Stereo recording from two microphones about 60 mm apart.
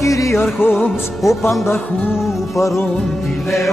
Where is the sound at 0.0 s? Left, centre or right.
Left.